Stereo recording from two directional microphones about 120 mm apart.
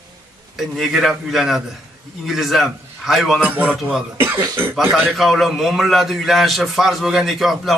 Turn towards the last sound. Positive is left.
turn(degrees=0)  # may be behind; listen again after turning